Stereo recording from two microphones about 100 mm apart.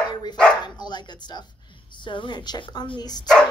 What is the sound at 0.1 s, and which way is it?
Dog, 45° left (ahead or behind).